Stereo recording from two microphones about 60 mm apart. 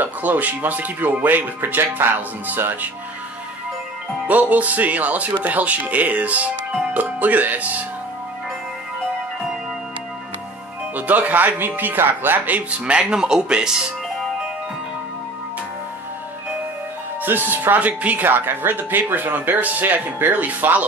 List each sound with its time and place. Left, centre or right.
0.0 s speech: right
4.3 s speech: right
11.0 s speech: right
17.2 s speech: right